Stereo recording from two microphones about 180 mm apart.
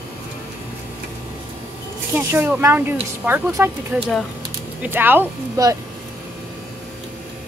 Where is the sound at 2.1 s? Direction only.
10° right (ahead or behind).